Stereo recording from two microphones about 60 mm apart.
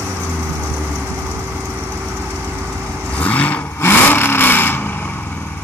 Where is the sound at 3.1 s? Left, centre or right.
Left.